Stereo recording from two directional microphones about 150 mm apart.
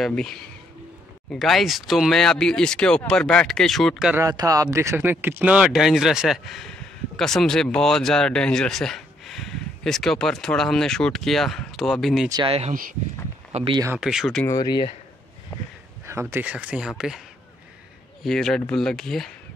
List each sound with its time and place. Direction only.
0.0 s speech: 5° left (ahead or behind)
4.1 s speech: 25° right (ahead or behind); by 12.3 s centre (ahead or behind)
12.4 s speech: 45° right (ahead or behind)
13.9 s speech: centre (ahead or behind)
14.4 s speech: 25° left (ahead or behind)
16.1 s speech: 15° right (ahead or behind)
18.2 s speech: 5° left (ahead or behind)